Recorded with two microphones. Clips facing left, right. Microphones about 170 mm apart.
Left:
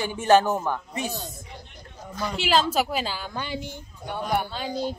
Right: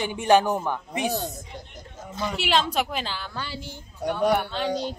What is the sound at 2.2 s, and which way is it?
A woman's voice, centre (ahead or behind).